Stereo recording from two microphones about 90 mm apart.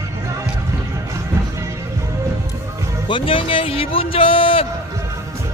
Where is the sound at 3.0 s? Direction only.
70° left (ahead or behind); by 4.6 s 90° left.